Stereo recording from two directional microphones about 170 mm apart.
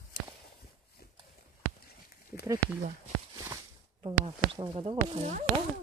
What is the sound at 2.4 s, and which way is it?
Speech, 10° right (ahead or behind).